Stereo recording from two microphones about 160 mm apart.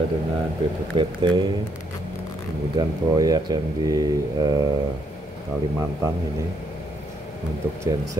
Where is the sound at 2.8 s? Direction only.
25° right (ahead or behind).